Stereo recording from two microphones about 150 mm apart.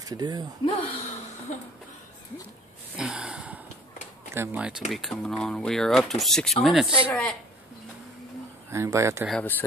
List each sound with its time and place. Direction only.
0.0 s speech: 25° right (ahead or behind)
0.7 s speech: 35° left (ahead or behind)
3.0 s gasp: 5° right (ahead or behind)
4.3 s speech: 15° right (ahead or behind)
7.1 s a woman's voice: 10° left (ahead or behind)
8.6 s speech: 20° right (ahead or behind)
9.4 s a woman's voice: 10° left (ahead or behind)